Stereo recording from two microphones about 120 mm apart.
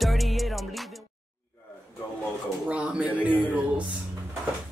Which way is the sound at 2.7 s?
10° right (ahead or behind).